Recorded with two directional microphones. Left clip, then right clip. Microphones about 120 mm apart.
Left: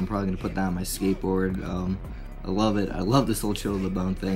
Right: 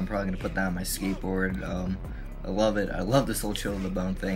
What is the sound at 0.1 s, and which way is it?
Speech, 30° left (ahead or behind).